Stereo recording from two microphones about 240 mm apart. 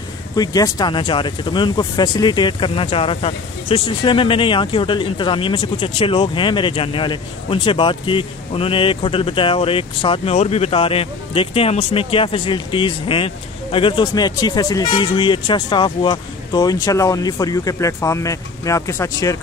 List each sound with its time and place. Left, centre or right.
0.4 s speech: centre